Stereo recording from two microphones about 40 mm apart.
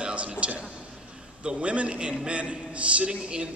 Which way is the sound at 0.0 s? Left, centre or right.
Right.